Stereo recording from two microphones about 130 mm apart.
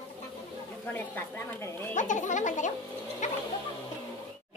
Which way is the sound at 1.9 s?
75° left (ahead or behind).